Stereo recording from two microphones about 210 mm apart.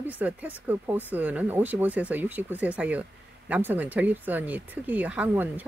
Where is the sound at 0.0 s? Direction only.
10° right (ahead or behind).